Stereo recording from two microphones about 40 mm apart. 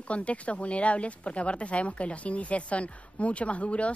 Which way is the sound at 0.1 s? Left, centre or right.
Left.